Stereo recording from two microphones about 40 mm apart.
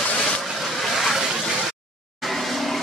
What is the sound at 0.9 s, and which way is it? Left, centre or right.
Vehicle, centre.